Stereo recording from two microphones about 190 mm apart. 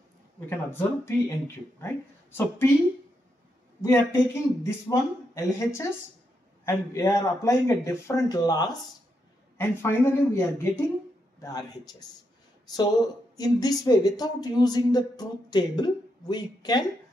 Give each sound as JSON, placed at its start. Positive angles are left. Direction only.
{"t": 0.5, "sound": "speech", "side_deg": 10}
{"t": 3.8, "sound": "speech", "side_deg": 15}
{"t": 13.4, "sound": "speech", "side_deg": 20}